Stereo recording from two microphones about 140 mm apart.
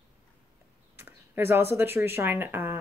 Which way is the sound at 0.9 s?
15° right (ahead or behind).